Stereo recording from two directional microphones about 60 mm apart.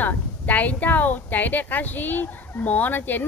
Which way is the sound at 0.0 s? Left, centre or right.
Left.